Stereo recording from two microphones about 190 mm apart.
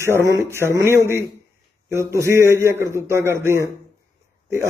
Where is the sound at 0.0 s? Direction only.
15° right (ahead or behind).